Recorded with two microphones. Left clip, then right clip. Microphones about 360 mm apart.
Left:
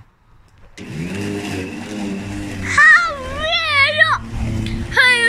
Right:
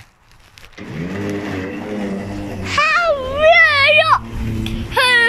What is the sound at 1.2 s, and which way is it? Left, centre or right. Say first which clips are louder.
Vehicle: right 1 dB; left.